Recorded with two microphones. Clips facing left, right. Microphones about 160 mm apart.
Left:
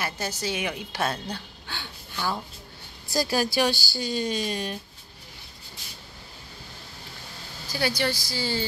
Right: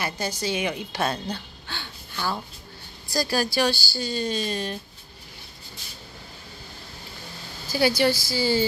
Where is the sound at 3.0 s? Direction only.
20° left (ahead or behind).